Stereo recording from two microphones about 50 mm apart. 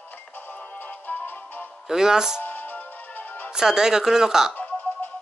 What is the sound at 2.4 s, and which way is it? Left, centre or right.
Music, left.